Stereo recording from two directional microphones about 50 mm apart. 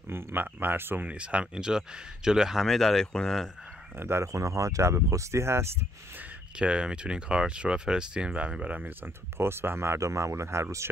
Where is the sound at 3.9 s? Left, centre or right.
Right.